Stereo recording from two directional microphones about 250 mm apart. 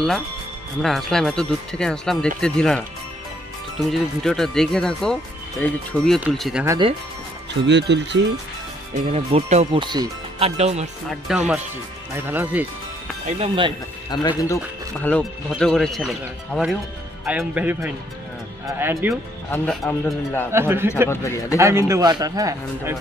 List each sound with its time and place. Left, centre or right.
0.8 s speech: centre
4.2 s speech: centre
6.6 s speech: centre
7.6 s speech: right
8.9 s speech: right
11.1 s speech: centre
13.3 s speech: right
14.1 s a man's voice: centre
14.5 s speech: centre
19.5 s speech: centre
20.5 s speech: centre
21.1 s a man's voice: centre
21.5 s speech: centre